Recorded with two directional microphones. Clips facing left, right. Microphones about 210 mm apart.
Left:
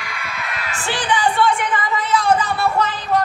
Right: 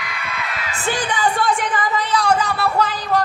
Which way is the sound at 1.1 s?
45° right (ahead or behind).